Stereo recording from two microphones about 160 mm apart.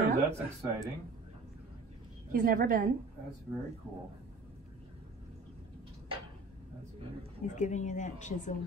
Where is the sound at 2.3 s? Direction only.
55° right (ahead or behind).